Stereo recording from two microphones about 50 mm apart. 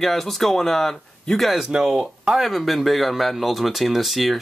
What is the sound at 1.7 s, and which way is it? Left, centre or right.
Speech, centre.